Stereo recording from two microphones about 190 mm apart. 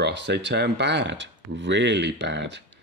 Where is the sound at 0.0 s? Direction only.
65° right (ahead or behind).